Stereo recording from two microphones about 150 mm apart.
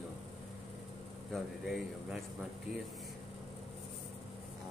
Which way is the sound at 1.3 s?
Centre (ahead or behind).